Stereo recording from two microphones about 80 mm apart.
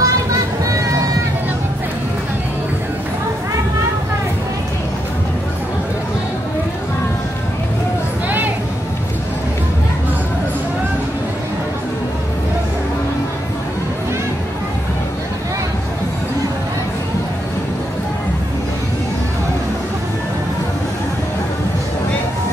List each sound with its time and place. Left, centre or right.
0.0 s vehicle: right